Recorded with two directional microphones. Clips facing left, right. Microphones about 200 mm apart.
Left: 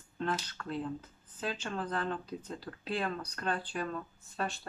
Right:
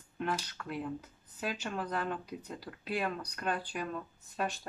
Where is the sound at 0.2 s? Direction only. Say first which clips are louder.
Left 1 dB; 10° right (ahead or behind).